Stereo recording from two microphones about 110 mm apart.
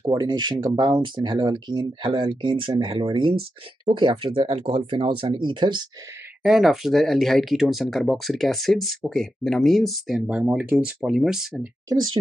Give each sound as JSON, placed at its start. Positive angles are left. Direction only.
{"t": 0.2, "sound": "speech", "side_deg": -40}
{"t": 6.4, "sound": "speech", "side_deg": 0}